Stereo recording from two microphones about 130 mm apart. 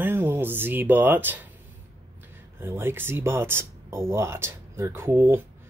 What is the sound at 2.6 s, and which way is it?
Speech, 20° right (ahead or behind).